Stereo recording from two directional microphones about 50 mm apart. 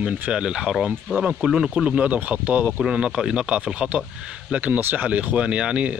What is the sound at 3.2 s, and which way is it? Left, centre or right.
Speech, centre.